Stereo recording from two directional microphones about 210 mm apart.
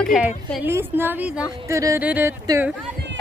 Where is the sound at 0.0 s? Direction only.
Centre (ahead or behind).